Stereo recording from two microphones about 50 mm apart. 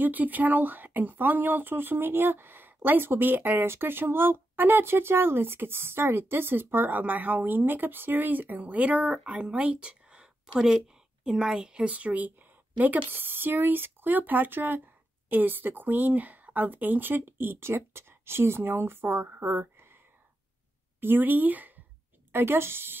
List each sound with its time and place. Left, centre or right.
0.0 s speech: right
3.6 s speech: right
9.0 s a woman's voice: right
11.9 s speech: right
21.0 s speech: right
22.3 s speech: right